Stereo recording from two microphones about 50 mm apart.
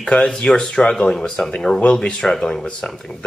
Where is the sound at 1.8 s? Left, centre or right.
Left.